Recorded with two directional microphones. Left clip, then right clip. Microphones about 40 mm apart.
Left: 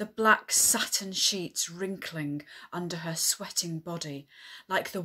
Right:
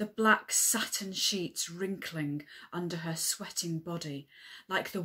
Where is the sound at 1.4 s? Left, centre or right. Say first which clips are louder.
Left 2 dB; left.